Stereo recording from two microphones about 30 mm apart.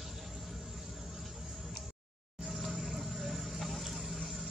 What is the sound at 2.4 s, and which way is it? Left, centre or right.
Vehicle, centre.